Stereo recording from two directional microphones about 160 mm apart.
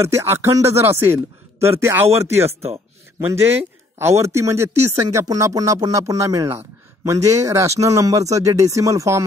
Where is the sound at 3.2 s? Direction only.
15° right (ahead or behind).